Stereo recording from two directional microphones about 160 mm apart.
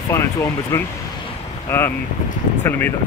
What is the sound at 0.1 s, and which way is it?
Speech, 20° left (ahead or behind).